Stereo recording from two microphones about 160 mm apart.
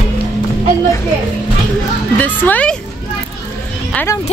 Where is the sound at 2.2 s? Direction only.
10° left (ahead or behind).